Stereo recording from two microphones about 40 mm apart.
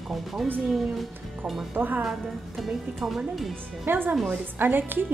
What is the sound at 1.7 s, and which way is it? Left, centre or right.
Speech, right.